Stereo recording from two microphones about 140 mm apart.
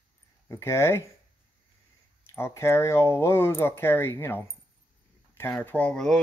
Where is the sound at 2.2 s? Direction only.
20° left (ahead or behind).